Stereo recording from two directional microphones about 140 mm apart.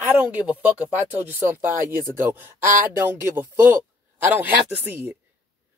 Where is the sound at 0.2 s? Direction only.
10° right (ahead or behind).